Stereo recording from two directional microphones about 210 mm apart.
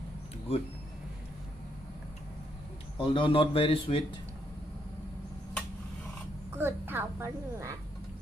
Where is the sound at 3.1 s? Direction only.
25° left (ahead or behind).